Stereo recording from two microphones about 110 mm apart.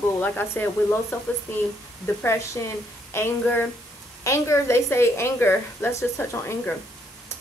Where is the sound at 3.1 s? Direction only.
20° left (ahead or behind).